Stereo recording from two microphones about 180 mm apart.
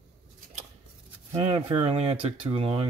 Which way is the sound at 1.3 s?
30° right (ahead or behind).